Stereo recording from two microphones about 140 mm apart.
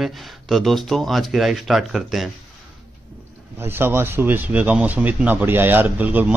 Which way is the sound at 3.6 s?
15° right (ahead or behind).